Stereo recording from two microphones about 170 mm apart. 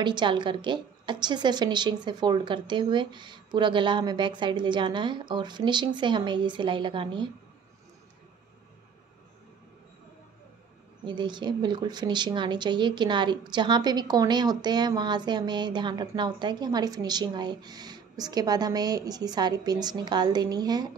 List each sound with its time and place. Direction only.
0.0 s speech: 25° right (ahead or behind)
11.1 s speech: 25° right (ahead or behind)